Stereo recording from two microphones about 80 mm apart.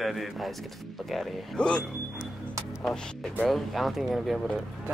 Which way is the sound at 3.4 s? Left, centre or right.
Centre.